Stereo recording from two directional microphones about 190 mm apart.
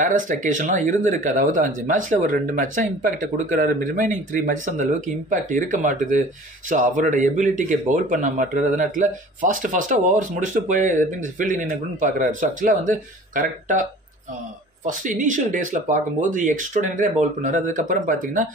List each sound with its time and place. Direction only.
0.0 s speech: 45° right (ahead or behind)
14.9 s speech: 40° right (ahead or behind)